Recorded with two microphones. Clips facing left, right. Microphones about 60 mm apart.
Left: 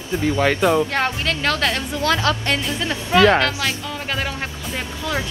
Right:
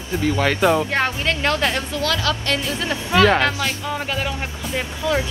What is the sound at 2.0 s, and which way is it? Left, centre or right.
Speech, left.